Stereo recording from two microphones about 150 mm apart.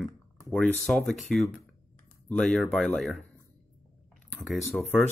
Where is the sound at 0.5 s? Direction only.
5° left (ahead or behind).